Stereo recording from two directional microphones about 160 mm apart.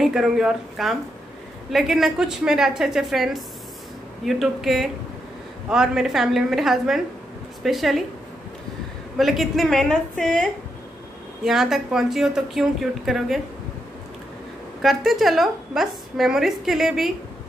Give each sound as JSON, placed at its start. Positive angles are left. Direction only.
{"t": 0.0, "sound": "a woman's voice", "side_deg": -5}
{"t": 9.2, "sound": "a woman's voice", "side_deg": 0}
{"t": 14.8, "sound": "a woman's voice", "side_deg": 0}